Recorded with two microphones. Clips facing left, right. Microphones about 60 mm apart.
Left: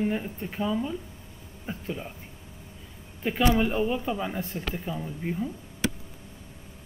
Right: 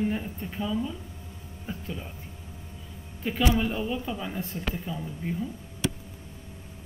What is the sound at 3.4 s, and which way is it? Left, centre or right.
A woman's voice, left.